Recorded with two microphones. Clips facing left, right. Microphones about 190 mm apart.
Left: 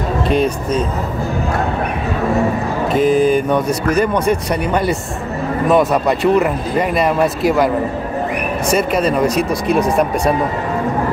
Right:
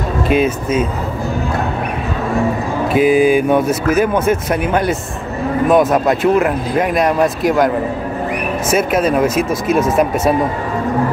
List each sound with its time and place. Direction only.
0.3 s speech: 5° right (ahead or behind)
2.9 s speech: 5° right (ahead or behind)